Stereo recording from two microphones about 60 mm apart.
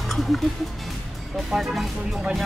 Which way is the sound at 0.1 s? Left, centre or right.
Centre.